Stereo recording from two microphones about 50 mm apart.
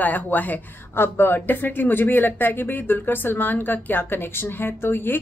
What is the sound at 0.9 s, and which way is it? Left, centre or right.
Speech, left.